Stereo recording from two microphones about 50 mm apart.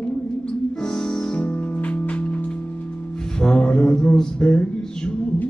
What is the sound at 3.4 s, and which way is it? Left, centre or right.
Mantra, centre.